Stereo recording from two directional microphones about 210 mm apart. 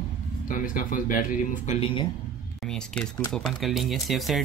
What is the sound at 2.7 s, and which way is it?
Speech, 5° left (ahead or behind).